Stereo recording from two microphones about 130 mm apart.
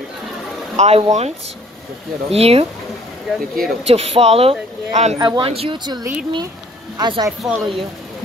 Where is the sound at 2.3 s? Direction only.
50° right (ahead or behind).